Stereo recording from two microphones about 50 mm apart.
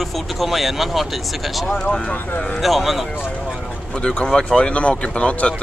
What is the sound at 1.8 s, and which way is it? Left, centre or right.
Speech, centre.